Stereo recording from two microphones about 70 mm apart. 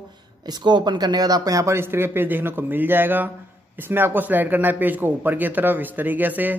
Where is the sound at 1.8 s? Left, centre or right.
Right.